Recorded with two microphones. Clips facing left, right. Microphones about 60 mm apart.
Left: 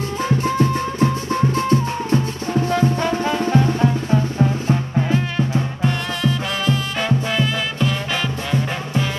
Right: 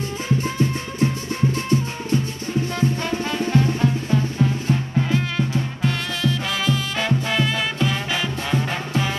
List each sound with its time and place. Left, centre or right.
3.0 s music: left
5.9 s music: centre